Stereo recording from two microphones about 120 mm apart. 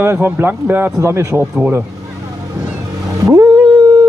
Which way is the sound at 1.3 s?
10° right (ahead or behind).